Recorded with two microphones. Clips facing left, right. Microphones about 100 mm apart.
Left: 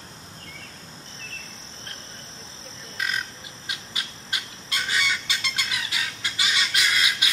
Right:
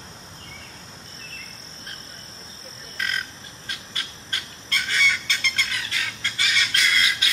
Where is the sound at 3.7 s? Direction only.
15° left (ahead or behind).